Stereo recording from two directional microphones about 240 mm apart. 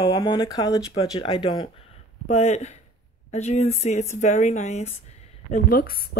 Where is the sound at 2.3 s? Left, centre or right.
Left.